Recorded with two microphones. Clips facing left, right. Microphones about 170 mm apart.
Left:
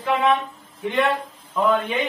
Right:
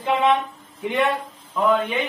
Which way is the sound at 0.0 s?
20° right (ahead or behind).